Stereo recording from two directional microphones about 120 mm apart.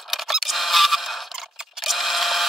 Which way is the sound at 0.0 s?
Centre (ahead or behind).